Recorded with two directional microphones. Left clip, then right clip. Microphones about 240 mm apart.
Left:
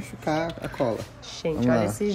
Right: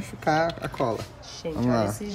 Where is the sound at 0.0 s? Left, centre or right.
Centre.